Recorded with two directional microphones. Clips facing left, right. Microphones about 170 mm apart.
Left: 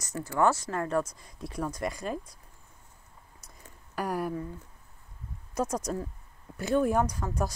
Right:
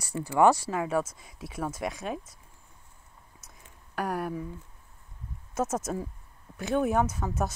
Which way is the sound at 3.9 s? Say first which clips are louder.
Even; centre (ahead or behind).